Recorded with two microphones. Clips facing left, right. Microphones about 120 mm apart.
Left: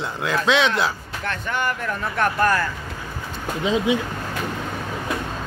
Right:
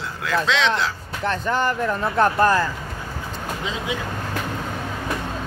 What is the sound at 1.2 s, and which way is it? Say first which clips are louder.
Speech: right 4 dB; 30° right (ahead or behind).